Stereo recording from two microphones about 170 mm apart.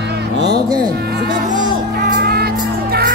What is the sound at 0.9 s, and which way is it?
Music, 75° right (ahead or behind).